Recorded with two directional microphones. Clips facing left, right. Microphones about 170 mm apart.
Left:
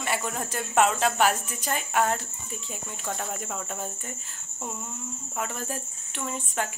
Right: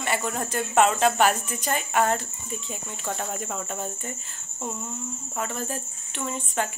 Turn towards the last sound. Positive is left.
turn(degrees=5)  # may be behind; listen again after turning